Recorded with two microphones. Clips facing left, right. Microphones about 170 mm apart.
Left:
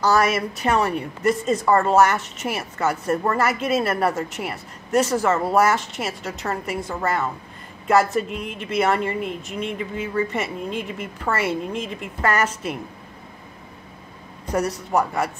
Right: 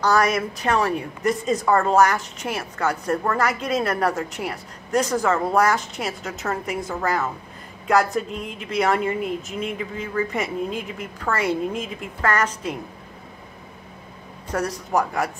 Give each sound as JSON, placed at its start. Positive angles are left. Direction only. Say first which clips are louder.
{"t": 0.0, "sound": "a woman's voice", "louder": "left 1 dB", "side_deg": 5}
{"t": 14.5, "sound": "a woman's voice", "louder": "left 1 dB", "side_deg": 10}